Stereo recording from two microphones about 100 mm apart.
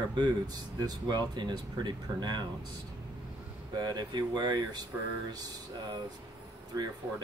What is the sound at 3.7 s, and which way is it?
Speech, 45° right (ahead or behind).